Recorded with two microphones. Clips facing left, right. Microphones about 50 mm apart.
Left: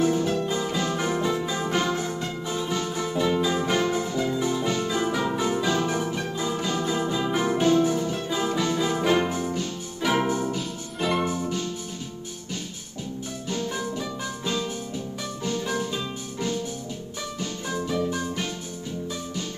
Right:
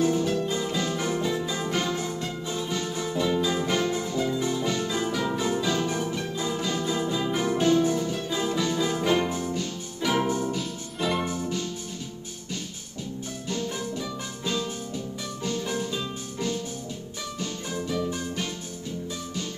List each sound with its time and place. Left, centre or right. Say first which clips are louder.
0.0 s music: left 1 dB; left
10.5 s music: left 1 dB; centre
11.2 s music: left 2 dB; left
13.5 s music: left 2 dB; left